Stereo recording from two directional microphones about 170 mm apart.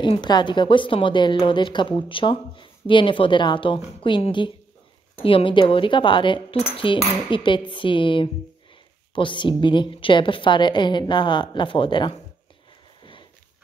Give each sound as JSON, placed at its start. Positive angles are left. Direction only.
{"t": 0.0, "sound": "a woman's voice", "side_deg": 25}